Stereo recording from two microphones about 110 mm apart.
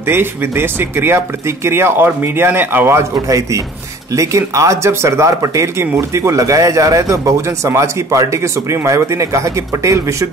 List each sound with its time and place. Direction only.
0.0 s speech: 20° right (ahead or behind)